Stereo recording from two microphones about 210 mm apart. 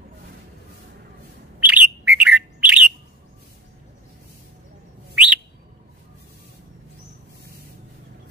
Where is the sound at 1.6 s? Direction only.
5° right (ahead or behind).